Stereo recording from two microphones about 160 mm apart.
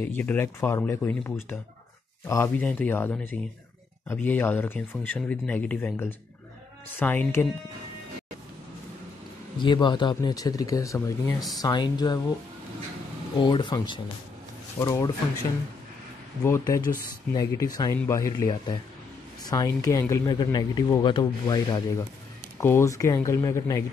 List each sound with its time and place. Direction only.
0.0 s speech: 10° left (ahead or behind)
9.6 s speech: 30° left (ahead or behind)
13.4 s speech: 30° left (ahead or behind)
16.4 s speech: 20° left (ahead or behind)